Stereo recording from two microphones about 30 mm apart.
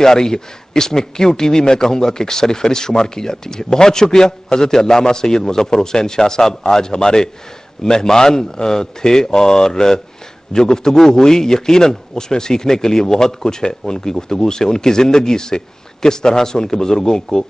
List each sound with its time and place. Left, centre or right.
0.0 s a man's voice: left